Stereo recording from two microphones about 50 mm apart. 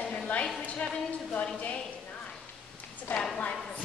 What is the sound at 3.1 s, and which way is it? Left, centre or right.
Speech, left.